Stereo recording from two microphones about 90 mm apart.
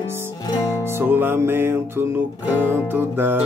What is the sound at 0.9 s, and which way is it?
Music, 25° right (ahead or behind).